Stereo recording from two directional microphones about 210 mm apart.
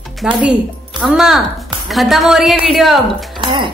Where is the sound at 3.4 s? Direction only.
25° right (ahead or behind).